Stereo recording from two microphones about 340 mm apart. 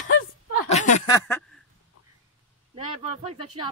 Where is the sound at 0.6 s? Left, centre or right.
Centre.